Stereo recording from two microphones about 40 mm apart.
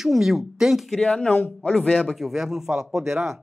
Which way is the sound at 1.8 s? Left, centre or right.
Left.